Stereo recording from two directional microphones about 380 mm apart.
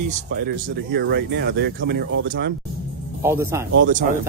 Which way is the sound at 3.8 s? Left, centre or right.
Centre.